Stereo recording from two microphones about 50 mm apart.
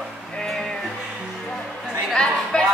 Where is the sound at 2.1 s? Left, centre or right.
Centre.